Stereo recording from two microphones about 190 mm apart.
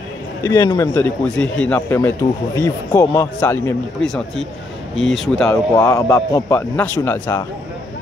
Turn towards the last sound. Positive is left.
turn(degrees=15)  # may be behind; listen again after turning